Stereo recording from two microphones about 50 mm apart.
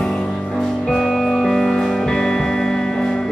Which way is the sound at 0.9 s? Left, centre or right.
Centre.